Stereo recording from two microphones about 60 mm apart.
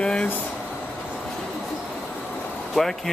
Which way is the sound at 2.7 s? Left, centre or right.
Centre.